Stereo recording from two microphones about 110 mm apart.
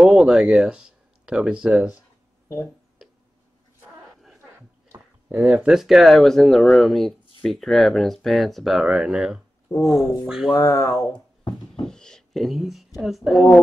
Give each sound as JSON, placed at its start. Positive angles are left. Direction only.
{"t": 0.0, "sound": "speech", "side_deg": -5}
{"t": 5.3, "sound": "speech", "side_deg": -10}
{"t": 10.5, "sound": "speech", "side_deg": 30}
{"t": 11.8, "sound": "speech", "side_deg": 5}